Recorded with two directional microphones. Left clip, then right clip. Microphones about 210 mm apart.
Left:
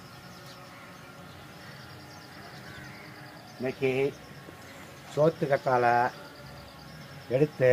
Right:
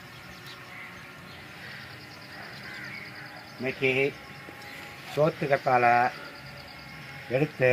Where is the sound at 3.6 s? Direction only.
Centre (ahead or behind).